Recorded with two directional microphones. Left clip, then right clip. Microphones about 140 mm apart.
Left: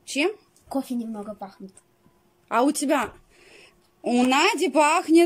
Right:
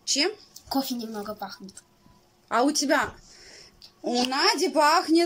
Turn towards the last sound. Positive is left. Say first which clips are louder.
# left 2 dB
turn(degrees=15)  # may be behind; listen again after turning